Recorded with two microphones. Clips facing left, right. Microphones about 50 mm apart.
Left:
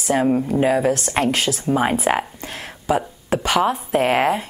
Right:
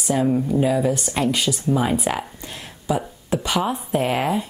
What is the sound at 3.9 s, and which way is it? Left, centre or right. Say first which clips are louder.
Speech: left 4 dB; left.